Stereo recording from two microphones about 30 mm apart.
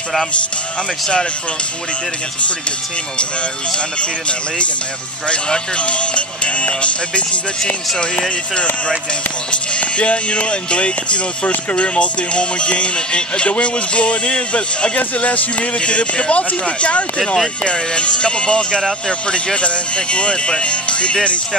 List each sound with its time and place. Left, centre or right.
5.8 s speech: left
9.5 s speech: left